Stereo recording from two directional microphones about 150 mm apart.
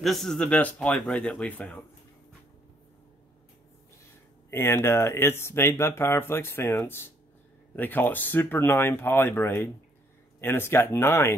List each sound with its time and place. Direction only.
0.0 s speech: centre (ahead or behind)
4.5 s speech: 15° left (ahead or behind)